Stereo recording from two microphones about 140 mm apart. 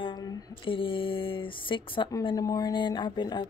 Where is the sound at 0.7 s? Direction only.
40° left (ahead or behind).